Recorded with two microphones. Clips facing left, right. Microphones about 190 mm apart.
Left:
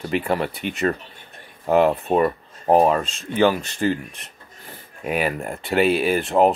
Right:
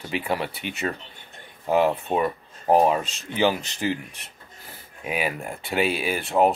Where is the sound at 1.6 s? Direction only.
55° left (ahead or behind).